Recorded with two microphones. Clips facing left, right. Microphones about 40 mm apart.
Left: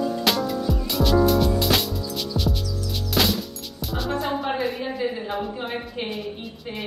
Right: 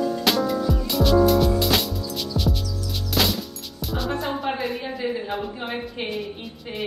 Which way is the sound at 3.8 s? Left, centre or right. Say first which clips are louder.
Even; centre.